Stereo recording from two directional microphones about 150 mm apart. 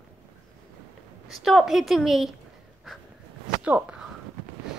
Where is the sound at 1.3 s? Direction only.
Centre (ahead or behind).